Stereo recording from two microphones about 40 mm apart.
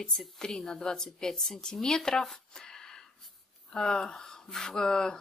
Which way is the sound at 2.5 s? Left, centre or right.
Centre.